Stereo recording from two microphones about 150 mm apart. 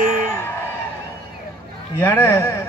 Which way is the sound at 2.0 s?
15° left (ahead or behind).